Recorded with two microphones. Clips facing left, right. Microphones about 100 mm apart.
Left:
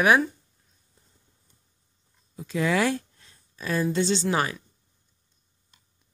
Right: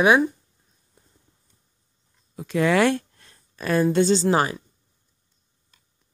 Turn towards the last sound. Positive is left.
turn(degrees=-30)  # may be behind; listen again after turning